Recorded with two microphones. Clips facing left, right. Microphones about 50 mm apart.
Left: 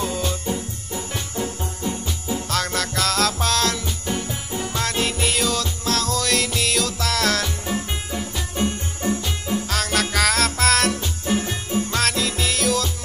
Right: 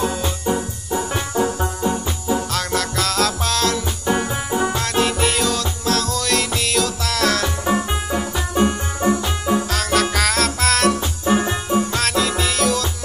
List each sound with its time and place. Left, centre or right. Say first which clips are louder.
0.0 s music: right 3 dB; centre
0.5 s music: right 6 dB; right
2.5 s music: right 2 dB; centre
4.0 s music: right 7 dB; right
4.7 s music: right 4 dB; centre
7.4 s music: right 6 dB; right
9.7 s music: right 4 dB; centre
11.2 s music: right 6 dB; right
11.9 s music: right 3 dB; centre